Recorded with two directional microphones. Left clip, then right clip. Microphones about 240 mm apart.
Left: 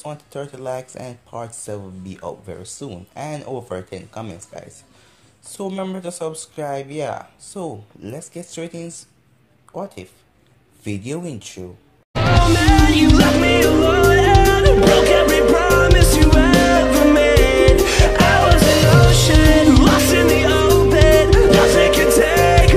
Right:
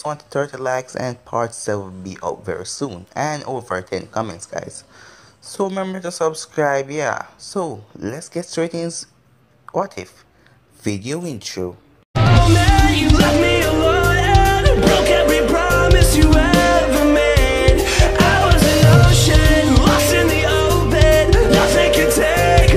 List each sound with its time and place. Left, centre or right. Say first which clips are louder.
0.0 s speech: right 8 dB; right
5.5 s speech: right 5 dB; right
8.1 s speech: right 5 dB; centre
8.5 s speech: right 9 dB; right
10.8 s speech: right 3 dB; right
12.1 s music: even; centre